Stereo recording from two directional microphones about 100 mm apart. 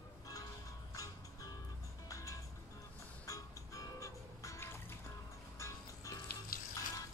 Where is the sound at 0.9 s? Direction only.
35° left (ahead or behind).